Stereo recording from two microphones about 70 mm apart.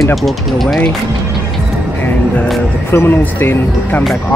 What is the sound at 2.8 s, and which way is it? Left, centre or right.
Speech, left.